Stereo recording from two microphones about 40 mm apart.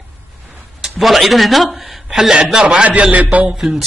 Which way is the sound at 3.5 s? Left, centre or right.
Centre.